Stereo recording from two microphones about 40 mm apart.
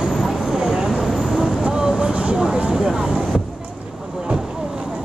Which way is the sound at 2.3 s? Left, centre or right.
Centre.